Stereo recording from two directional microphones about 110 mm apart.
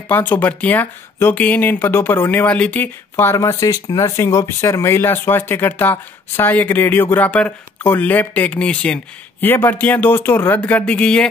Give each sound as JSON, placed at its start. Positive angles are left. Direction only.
{"t": 0.1, "sound": "speech", "side_deg": 15}